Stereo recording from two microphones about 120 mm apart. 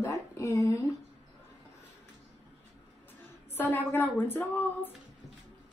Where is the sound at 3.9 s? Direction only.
15° left (ahead or behind).